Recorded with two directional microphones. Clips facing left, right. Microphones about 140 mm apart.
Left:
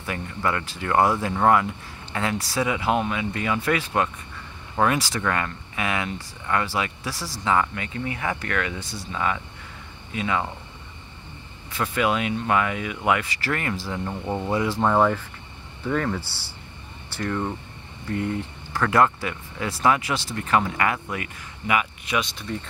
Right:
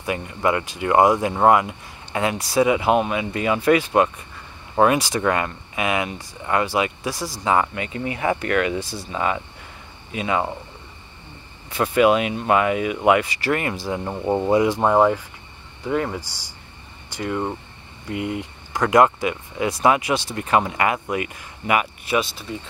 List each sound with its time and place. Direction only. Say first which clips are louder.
0.0 s speech: right 5 dB; 15° right (ahead or behind)
11.7 s speech: right 7 dB; 25° right (ahead or behind)
13.9 s speech: right 6 dB; 30° right (ahead or behind)
22.2 s speech: right 1 dB; 5° right (ahead or behind)